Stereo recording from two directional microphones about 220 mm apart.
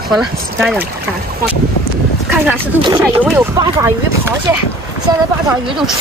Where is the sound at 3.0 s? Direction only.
10° right (ahead or behind).